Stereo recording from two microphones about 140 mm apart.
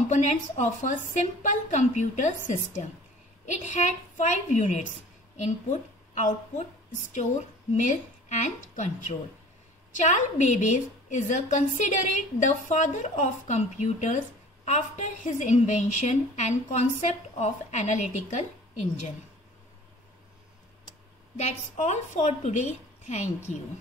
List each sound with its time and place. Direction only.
0.1 s a woman's voice: 55° left (ahead or behind)
21.4 s a woman's voice: 55° left (ahead or behind)